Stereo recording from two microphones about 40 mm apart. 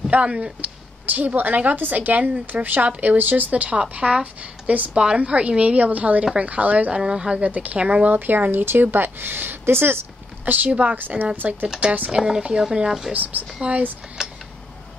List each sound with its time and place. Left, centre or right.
0.1 s speech: right
1.0 s speech: right
7.0 s speech: right
7.4 s speech: right
8.1 s speech: right
10.4 s speech: right
11.0 s speech: right
11.3 s speech: right
12.1 s speech: centre
13.1 s speech: right
13.6 s speech: right
14.2 s tick-tock: centre